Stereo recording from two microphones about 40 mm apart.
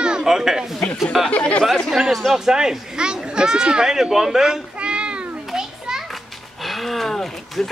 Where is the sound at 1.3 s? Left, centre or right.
Left.